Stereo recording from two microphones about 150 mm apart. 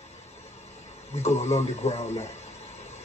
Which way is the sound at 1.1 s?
45° left (ahead or behind).